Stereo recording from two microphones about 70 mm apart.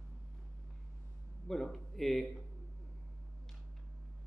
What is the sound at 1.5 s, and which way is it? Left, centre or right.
Speech, centre.